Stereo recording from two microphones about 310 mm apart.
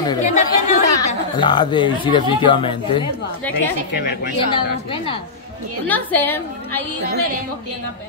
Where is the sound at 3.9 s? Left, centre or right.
Left.